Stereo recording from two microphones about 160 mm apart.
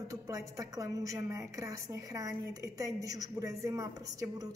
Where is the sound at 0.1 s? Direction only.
20° right (ahead or behind).